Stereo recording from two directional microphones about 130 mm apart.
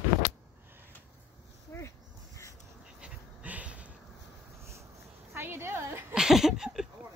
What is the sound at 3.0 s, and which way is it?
Pant, 10° right (ahead or behind).